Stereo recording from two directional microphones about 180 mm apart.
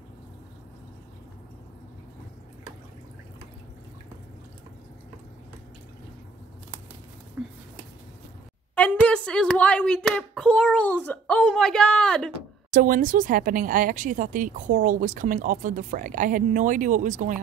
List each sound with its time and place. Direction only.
7.4 s a sound: 5° right (ahead or behind)
8.7 s speech: 10° left (ahead or behind)
12.7 s speech: 50° right (ahead or behind)